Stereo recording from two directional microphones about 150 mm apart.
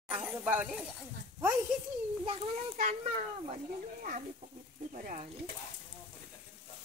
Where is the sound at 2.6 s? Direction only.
50° right (ahead or behind).